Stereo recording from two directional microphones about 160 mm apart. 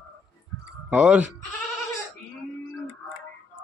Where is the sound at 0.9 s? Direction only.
5° right (ahead or behind).